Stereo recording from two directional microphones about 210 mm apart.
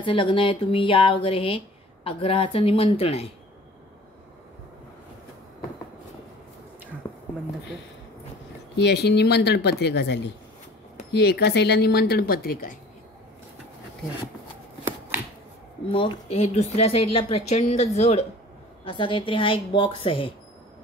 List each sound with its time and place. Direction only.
0.0 s speech: 25° left (ahead or behind)
7.0 s a sound: 20° left (ahead or behind)
8.7 s speech: 50° left (ahead or behind)
15.9 s speech: 25° left (ahead or behind)